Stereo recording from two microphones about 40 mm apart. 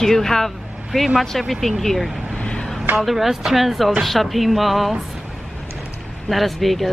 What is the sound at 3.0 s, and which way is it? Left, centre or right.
Speech, centre.